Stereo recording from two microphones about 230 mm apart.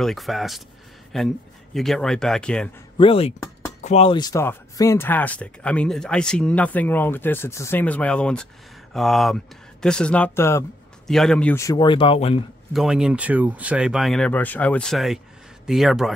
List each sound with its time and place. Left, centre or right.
0.0 s speech: centre
3.0 s speech: left
12.7 s speech: centre